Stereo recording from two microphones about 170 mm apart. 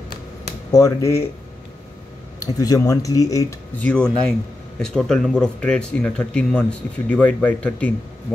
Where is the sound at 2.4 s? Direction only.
20° left (ahead or behind).